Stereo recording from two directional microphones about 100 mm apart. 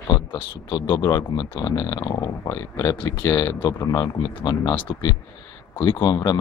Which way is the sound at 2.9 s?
50° left (ahead or behind).